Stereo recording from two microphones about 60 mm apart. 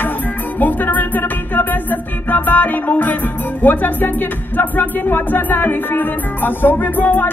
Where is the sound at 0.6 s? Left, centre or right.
Left.